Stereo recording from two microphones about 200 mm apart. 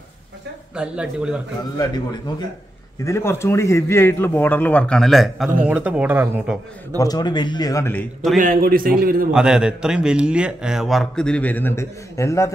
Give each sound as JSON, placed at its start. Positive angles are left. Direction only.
{"t": 0.7, "sound": "a man's voice", "side_deg": -5}
{"t": 1.6, "sound": "a man's voice", "side_deg": 20}
{"t": 7.0, "sound": "speech", "side_deg": 20}
{"t": 8.4, "sound": "a man's voice", "side_deg": -45}
{"t": 9.3, "sound": "a man's voice", "side_deg": -5}